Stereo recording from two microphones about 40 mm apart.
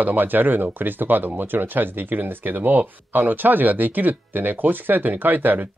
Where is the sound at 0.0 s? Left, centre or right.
Right.